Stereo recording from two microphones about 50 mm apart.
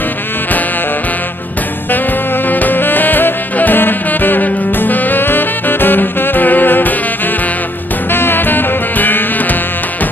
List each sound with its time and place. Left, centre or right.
2.4 s music: left
8.1 s music: left